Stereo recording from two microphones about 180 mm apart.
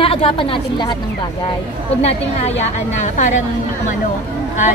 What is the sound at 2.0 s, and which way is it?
A woman's voice, 35° left (ahead or behind).